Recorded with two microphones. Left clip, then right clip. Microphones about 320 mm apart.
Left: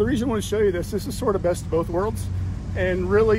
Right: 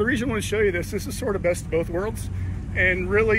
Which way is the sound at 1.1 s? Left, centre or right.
Centre.